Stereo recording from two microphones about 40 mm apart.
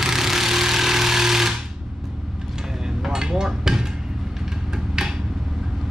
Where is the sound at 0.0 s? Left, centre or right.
Centre.